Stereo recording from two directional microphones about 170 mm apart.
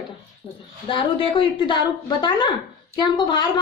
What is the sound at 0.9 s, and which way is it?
A woman's voice, 30° left (ahead or behind).